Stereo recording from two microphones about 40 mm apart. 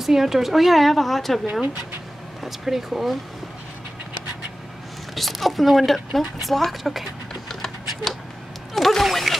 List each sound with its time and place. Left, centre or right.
0.0 s a woman's voice: centre
1.5 s speech: right
2.4 s speech: centre
5.1 s speech: centre
8.7 s a sound: centre